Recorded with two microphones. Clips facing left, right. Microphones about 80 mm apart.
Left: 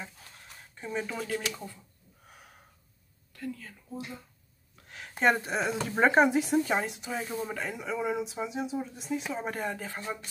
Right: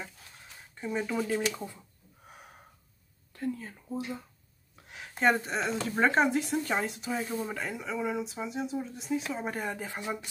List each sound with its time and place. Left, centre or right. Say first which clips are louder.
0.7 s speech: right 3 dB; centre
1.2 s speech: right 3 dB; centre
2.2 s gasp: right 3 dB; centre
3.3 s speech: right 4 dB; right
4.8 s a sound: even; centre
5.1 s speech: left 1 dB; centre